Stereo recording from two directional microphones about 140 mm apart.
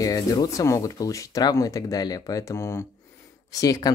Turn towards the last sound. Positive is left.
turn(degrees=25)  # may be behind; listen again after turning